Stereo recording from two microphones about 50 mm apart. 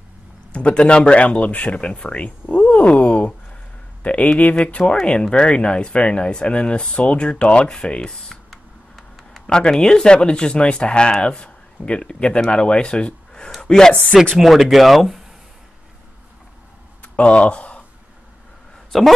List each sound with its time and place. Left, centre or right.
0.5 s speech: left; by 9.4 s centre
9.5 s speech: centre
14.3 s speech: centre
17.0 s a sound: left
18.9 s speech: centre